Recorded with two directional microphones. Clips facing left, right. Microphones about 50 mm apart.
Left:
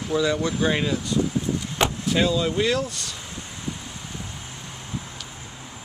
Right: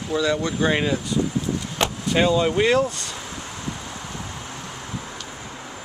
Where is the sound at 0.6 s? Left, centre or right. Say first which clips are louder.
Right 3 dB; centre.